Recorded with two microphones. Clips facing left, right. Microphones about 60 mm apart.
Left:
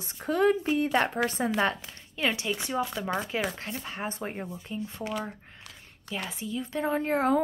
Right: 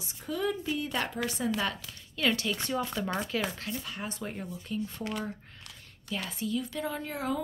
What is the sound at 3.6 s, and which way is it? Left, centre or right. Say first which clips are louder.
A woman's voice: left 2 dB; left.